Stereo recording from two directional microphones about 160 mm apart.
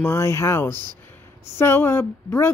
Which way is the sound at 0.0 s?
15° left (ahead or behind).